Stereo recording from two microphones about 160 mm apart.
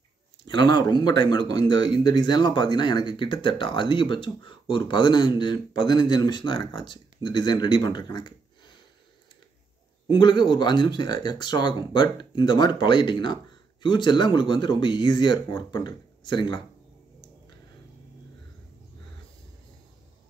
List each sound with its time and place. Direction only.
0.5 s speech: 25° left (ahead or behind)
10.0 s speech: 30° left (ahead or behind)